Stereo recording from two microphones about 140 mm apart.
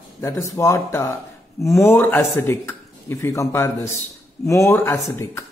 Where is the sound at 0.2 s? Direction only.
20° left (ahead or behind).